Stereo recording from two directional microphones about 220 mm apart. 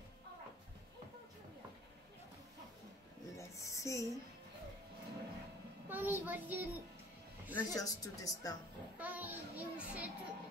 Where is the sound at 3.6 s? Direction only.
15° left (ahead or behind).